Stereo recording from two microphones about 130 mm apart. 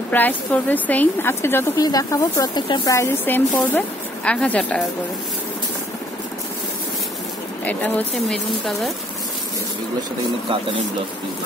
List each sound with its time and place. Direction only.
0.1 s speech: 15° left (ahead or behind)
7.6 s speech: 10° left (ahead or behind)